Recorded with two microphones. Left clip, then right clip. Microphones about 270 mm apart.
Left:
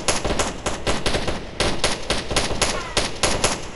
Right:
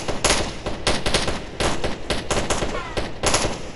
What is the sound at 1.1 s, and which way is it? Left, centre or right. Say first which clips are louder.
Gunshot: right 1 dB; centre.